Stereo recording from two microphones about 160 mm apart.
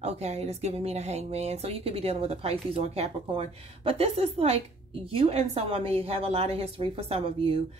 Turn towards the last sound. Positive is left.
turn(degrees=-35)  # may be behind; listen again after turning